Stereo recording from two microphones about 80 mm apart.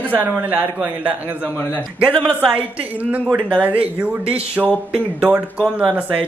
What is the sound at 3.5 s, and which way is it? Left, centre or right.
A man's voice, right.